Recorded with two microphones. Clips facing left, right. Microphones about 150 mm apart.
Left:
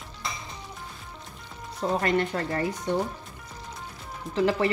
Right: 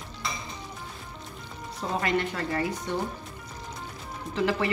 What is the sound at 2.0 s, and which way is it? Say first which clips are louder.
Speech: left 2 dB; 40° left (ahead or behind).